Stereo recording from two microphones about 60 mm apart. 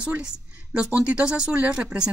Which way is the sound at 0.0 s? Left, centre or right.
Centre.